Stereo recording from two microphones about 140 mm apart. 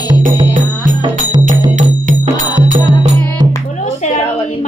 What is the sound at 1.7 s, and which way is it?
Music, 60° right (ahead or behind).